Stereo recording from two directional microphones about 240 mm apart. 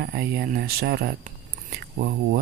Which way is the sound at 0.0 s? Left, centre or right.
Right.